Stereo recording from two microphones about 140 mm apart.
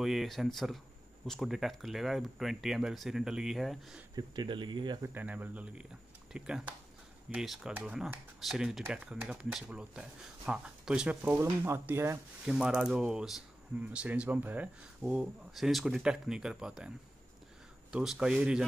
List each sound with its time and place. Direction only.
0.0 s speech: centre (ahead or behind)
4.1 s speech: 30° right (ahead or behind)
5.0 s speech: 10° right (ahead or behind)
12.4 s speech: 5° right (ahead or behind)
17.9 s speech: 5° right (ahead or behind)